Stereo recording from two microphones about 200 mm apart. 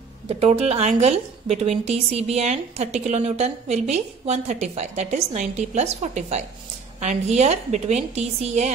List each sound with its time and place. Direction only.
0.3 s a woman's voice: 30° right (ahead or behind)